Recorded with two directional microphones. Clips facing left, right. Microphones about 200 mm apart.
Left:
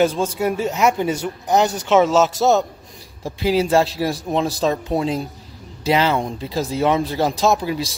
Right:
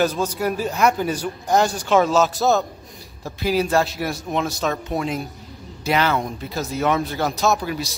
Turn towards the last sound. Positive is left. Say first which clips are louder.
# left 3 dB
turn(degrees=25)  # may be behind; listen again after turning